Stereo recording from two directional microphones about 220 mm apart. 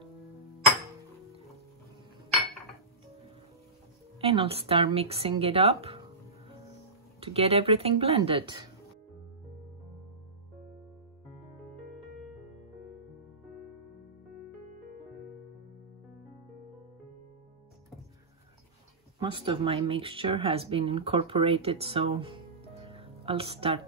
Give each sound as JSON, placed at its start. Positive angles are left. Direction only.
{"t": 4.2, "sound": "speech", "side_deg": -25}
{"t": 7.2, "sound": "speech", "side_deg": -25}
{"t": 19.1, "sound": "speech", "side_deg": -20}